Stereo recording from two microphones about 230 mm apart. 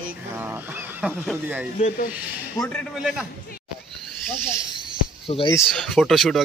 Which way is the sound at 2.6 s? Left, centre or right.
Centre.